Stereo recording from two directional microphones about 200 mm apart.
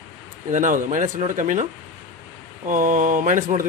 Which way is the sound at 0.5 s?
40° right (ahead or behind).